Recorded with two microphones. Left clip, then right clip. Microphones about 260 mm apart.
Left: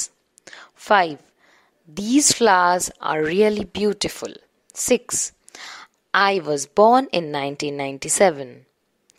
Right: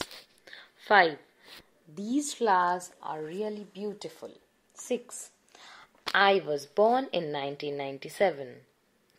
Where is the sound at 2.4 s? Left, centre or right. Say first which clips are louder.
Left 8 dB; left.